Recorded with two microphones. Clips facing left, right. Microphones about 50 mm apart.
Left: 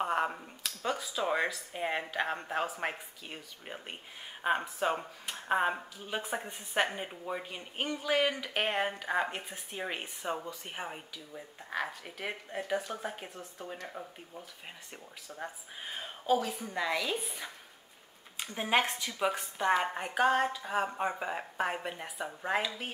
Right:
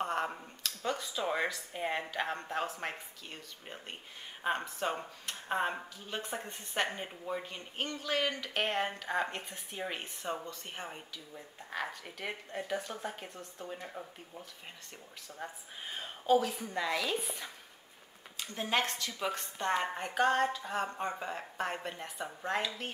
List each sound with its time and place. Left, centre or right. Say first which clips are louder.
0.0 s a woman's voice: left 3 dB; centre
18.4 s speech: left 3 dB; centre